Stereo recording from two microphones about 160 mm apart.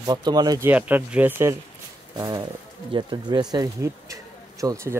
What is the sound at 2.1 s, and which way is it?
Speech, 25° right (ahead or behind).